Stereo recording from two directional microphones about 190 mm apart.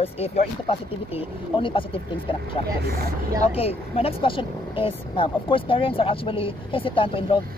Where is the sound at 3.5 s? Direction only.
30° left (ahead or behind).